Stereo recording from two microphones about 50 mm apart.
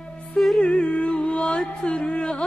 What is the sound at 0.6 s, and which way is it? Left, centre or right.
Music, left.